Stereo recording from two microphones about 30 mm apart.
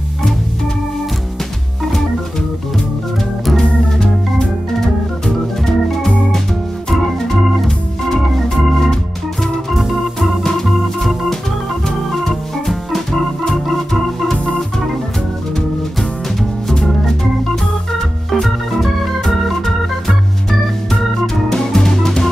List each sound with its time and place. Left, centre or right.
4.7 s organ: centre
7.6 s organ: centre
10.4 s organ: centre
12.3 s organ: centre
18.3 s organ: centre
21.5 s music: centre